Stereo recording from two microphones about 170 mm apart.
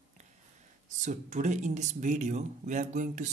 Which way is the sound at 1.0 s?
45° right (ahead or behind).